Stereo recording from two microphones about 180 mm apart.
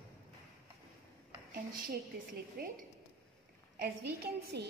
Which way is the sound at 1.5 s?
55° right (ahead or behind).